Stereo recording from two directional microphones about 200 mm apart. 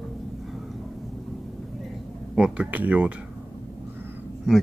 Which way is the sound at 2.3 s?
5° right (ahead or behind).